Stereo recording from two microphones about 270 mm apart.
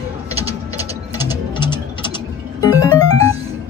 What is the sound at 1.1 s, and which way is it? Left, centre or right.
Music, centre.